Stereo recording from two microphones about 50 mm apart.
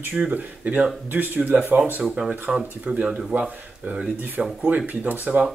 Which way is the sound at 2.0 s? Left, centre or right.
Right.